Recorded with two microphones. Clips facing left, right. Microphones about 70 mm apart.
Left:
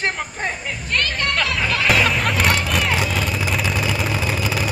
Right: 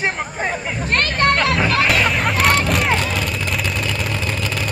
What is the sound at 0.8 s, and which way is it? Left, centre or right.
Music, right.